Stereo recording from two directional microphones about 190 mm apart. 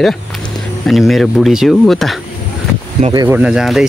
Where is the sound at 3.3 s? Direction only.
5° right (ahead or behind).